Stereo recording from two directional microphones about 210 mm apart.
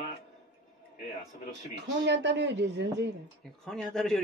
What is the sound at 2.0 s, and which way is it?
Speech, 55° right (ahead or behind).